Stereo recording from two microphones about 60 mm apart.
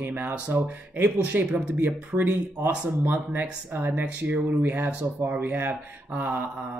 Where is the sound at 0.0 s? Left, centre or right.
Right.